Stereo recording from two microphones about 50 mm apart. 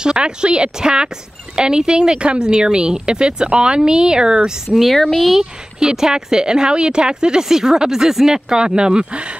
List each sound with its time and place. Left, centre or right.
0.0 s speech: centre
4.9 s speech: centre
5.4 s speech: centre